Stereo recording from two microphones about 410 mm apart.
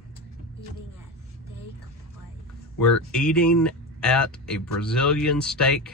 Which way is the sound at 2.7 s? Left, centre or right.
Centre.